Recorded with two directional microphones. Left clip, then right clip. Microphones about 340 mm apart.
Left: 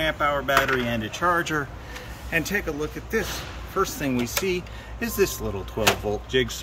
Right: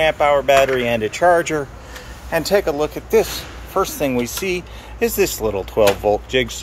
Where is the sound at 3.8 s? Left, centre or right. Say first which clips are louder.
Right 7 dB; centre.